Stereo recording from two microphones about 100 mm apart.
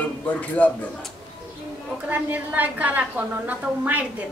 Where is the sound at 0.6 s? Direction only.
15° left (ahead or behind).